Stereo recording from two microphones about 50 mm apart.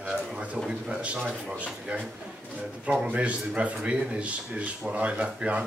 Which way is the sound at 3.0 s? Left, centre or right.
Right.